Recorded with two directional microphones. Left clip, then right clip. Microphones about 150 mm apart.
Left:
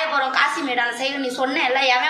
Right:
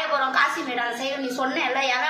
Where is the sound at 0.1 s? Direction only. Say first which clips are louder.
Even; 15° right (ahead or behind).